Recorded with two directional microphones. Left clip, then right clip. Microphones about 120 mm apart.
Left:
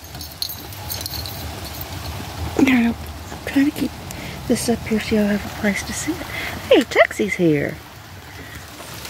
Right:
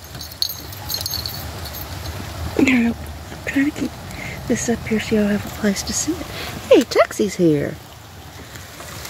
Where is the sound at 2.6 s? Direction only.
20° left (ahead or behind).